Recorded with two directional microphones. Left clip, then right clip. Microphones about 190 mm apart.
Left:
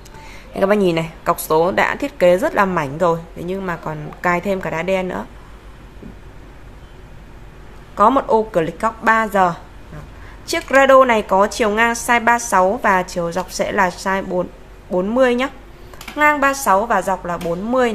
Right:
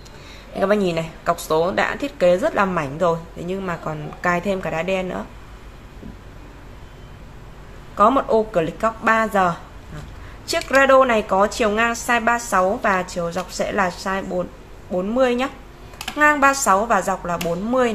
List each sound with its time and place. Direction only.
0.6 s a woman's voice: 25° left (ahead or behind)
7.9 s a woman's voice: 20° left (ahead or behind)